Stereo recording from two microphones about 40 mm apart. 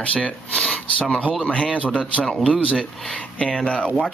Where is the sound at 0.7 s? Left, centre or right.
Left.